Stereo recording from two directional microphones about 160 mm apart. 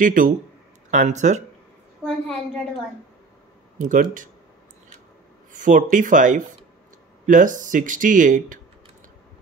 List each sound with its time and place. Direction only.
0.0 s speech: 55° right (ahead or behind)
2.0 s a woman's voice: 5° left (ahead or behind)
3.7 s speech: 55° right (ahead or behind)
5.5 s speech: 55° right (ahead or behind)